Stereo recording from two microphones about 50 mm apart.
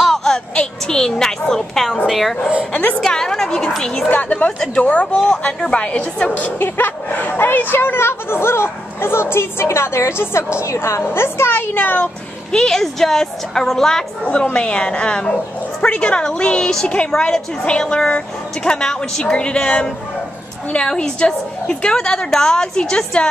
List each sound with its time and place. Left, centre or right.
0.0 s a sound: centre
1.5 s a woman's voice: centre
3.0 s a woman's voice: centre
4.1 s a woman's voice: left
6.3 s speech: left
11.0 s a woman's voice: left
12.5 s a woman's voice: centre
14.2 s a woman's voice: left